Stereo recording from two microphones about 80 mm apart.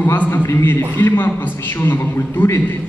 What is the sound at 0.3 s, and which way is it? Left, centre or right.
A man's voice, left.